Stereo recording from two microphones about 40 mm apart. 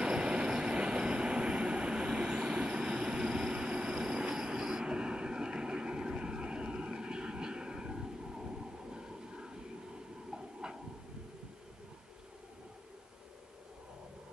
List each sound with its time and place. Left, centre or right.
0.0 s train: right
8.9 s vehicle: centre
10.3 s train: centre